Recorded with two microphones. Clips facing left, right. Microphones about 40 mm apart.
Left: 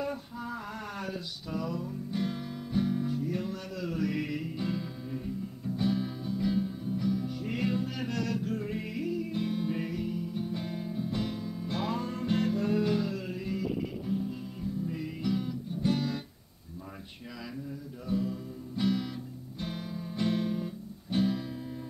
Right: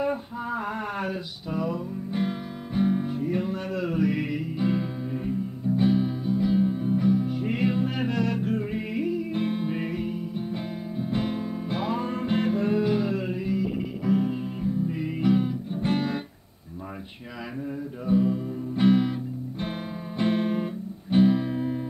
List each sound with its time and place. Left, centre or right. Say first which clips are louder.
0.0 s music: right 7 dB; right
4.7 s music: right 7 dB; right
9.3 s music: right 4 dB; right
11.7 s music: right 4 dB; centre; by 16.2 s right
18.0 s music: right 9 dB; right